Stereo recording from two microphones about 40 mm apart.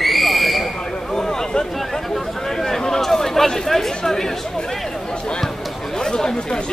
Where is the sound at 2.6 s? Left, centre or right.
Centre.